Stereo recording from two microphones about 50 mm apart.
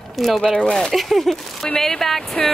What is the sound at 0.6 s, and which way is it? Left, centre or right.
Speech, centre.